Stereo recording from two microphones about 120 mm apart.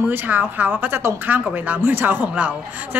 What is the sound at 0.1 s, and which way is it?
A woman's voice, 15° right (ahead or behind).